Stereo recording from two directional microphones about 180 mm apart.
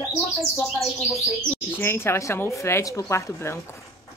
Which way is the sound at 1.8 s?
15° left (ahead or behind).